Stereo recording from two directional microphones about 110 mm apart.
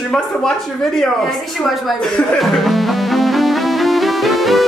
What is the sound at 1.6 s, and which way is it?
Music, centre (ahead or behind).